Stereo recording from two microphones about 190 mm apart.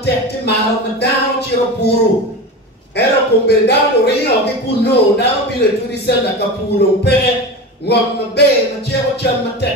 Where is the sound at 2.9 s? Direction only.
60° left (ahead or behind).